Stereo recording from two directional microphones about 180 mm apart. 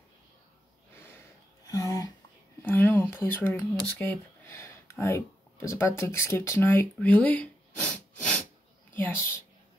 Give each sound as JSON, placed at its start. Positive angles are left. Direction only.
{"t": 0.9, "sound": "gasp", "side_deg": 10}
{"t": 1.7, "sound": "a sound", "side_deg": 20}
{"t": 4.0, "sound": "a woman's voice", "side_deg": 10}